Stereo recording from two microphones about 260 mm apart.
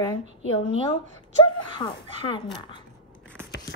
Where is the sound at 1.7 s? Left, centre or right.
Centre.